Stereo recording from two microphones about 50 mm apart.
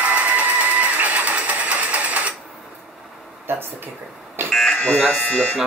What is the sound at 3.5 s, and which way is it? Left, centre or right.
Speech, right.